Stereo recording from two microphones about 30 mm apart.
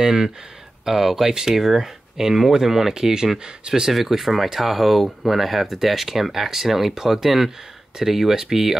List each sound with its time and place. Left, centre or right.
0.0 s speech: centre
2.9 s speech: right
3.9 s speech: centre